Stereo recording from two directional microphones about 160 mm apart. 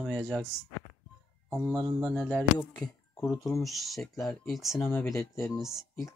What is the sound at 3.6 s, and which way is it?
Speech, centre (ahead or behind).